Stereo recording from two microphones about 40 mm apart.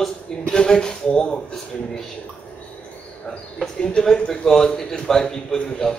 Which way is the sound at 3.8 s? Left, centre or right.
Left.